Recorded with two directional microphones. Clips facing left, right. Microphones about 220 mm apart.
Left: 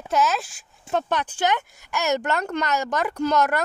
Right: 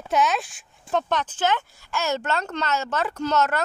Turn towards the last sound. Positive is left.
turn(degrees=15)  # may be behind; listen again after turning